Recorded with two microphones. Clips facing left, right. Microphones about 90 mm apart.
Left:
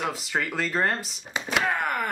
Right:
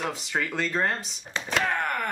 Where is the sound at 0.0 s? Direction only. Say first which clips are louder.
Left 1 dB; 5° left (ahead or behind).